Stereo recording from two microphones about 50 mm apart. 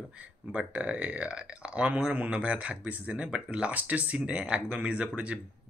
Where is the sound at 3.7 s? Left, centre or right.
Right.